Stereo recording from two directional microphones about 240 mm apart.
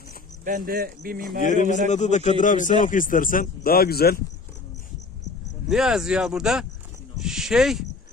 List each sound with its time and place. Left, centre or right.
0.5 s speech: right
1.4 s a man's voice: left
5.7 s speech: centre
7.2 s a sound: centre